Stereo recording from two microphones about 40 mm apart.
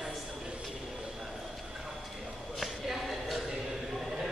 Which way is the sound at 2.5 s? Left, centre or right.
Centre.